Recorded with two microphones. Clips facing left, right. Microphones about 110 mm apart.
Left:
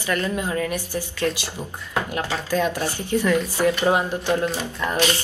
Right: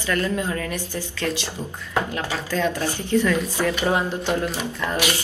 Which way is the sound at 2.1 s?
15° left (ahead or behind).